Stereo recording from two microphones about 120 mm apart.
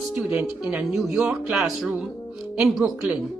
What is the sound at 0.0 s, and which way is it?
Speech, 5° right (ahead or behind).